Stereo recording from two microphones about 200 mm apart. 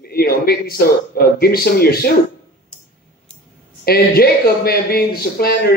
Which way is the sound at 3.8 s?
50° left (ahead or behind).